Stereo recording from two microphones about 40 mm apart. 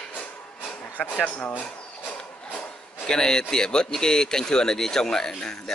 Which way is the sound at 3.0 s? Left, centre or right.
Centre.